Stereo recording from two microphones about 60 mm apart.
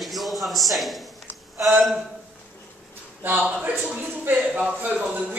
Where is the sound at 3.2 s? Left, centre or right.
Right.